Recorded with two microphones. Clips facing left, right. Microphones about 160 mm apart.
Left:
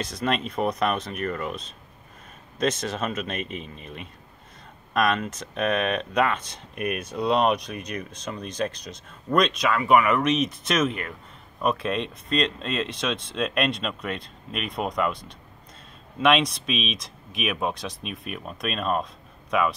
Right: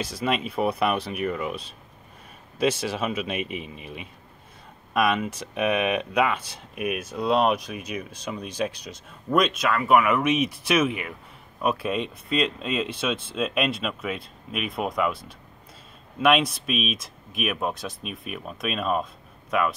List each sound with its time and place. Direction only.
0.0 s speech: 5° right (ahead or behind)